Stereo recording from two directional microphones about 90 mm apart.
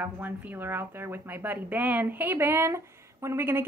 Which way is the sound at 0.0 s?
20° right (ahead or behind).